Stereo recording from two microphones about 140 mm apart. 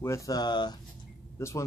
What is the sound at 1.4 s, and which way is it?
Speech, 20° left (ahead or behind).